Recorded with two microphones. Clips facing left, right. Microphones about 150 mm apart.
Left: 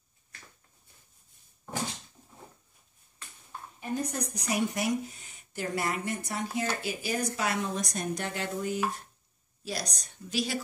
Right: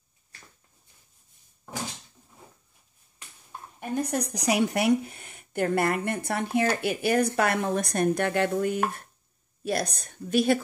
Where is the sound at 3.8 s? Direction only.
70° right (ahead or behind).